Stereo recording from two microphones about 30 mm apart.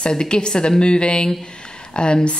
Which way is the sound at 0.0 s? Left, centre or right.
Left.